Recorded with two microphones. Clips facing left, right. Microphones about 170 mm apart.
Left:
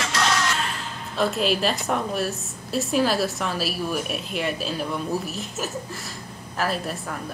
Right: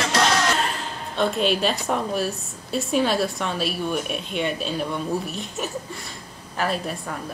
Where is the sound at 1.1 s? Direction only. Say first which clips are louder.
Right 1 dB; centre (ahead or behind).